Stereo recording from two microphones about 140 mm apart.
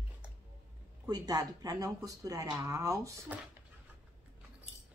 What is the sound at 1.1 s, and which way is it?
Speech, 25° right (ahead or behind).